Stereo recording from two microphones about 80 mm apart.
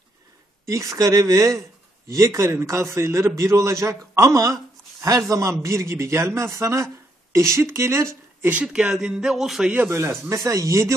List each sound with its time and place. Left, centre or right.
0.7 s a man's voice: right
8.6 s speech: centre
9.8 s a man's voice: right